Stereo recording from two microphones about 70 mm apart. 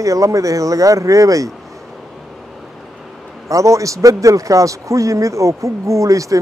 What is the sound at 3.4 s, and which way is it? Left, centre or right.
Speech, right.